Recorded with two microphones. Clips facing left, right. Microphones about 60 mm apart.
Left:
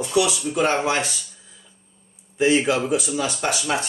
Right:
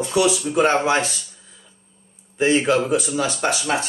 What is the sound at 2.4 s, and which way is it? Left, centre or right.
Speech, right.